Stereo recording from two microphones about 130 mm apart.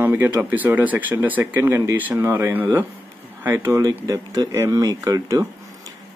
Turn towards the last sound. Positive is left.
turn(degrees=-25)  # may be behind; listen again after turning